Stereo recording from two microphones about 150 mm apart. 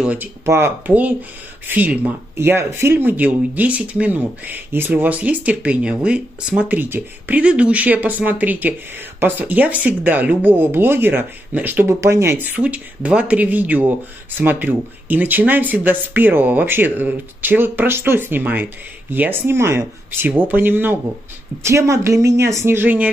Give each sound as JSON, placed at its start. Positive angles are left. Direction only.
{"t": 0.0, "sound": "a woman's voice", "side_deg": -10}